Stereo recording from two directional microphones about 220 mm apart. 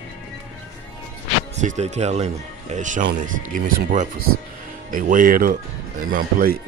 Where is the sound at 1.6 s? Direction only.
30° right (ahead or behind).